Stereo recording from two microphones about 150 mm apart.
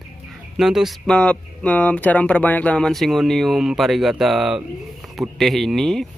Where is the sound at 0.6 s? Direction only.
Centre (ahead or behind).